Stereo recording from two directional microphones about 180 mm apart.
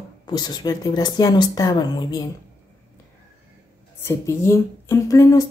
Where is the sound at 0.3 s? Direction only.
25° left (ahead or behind).